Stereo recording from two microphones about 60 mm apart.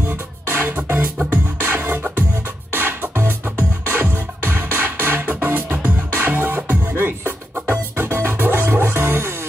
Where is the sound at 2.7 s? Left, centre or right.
Right.